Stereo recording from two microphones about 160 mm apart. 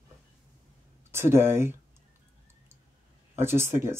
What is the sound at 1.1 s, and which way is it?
Speech, 15° right (ahead or behind).